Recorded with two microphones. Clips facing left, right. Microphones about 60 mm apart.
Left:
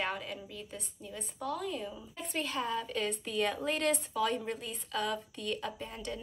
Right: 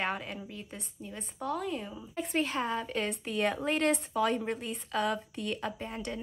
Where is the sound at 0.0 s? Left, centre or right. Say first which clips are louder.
Right 2 dB; right.